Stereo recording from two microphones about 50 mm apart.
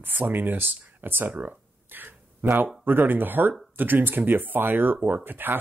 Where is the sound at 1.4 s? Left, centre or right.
Right.